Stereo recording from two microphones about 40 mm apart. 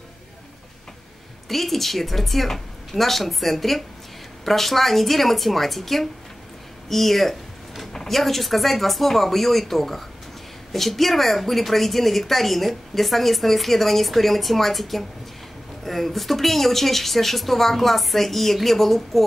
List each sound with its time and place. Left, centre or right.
1.5 s a woman's voice: centre